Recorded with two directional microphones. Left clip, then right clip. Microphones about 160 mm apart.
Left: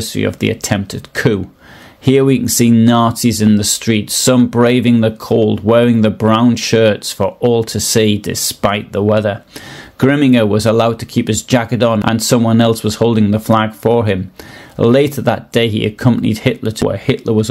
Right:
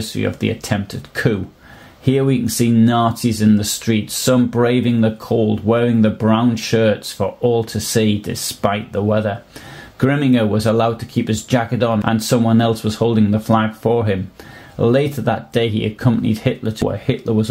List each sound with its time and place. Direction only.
0.0 s speech: 50° left (ahead or behind)